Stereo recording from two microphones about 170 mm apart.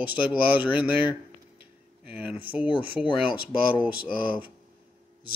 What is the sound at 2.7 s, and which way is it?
Speech, 30° left (ahead or behind).